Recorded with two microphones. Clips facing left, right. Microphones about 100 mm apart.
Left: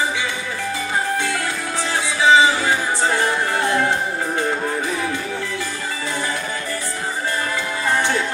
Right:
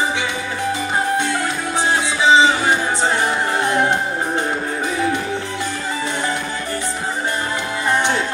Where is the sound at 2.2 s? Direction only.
20° right (ahead or behind).